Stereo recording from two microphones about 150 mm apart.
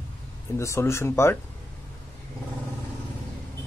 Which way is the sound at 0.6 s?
20° left (ahead or behind).